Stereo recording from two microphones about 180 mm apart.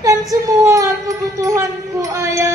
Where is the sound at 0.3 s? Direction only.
15° right (ahead or behind).